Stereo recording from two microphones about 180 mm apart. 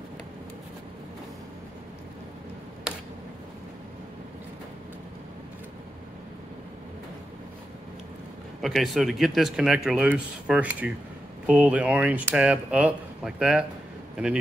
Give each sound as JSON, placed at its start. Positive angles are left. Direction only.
{"t": 8.5, "sound": "a man's voice", "side_deg": 0}